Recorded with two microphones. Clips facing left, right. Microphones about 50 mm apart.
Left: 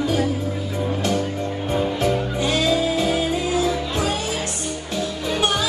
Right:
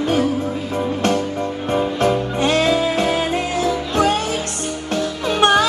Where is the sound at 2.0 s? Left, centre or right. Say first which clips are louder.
Right 4 dB; right.